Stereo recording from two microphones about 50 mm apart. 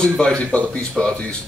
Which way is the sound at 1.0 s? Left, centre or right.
Centre.